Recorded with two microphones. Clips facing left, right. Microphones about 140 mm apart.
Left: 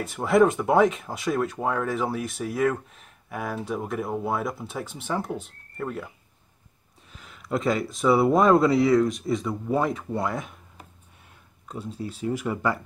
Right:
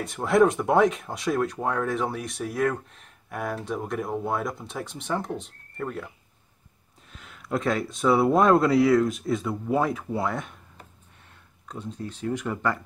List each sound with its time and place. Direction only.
0.0 s speech: centre (ahead or behind)